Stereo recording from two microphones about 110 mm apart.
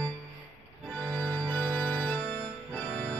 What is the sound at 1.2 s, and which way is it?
Organ, 5° left (ahead or behind).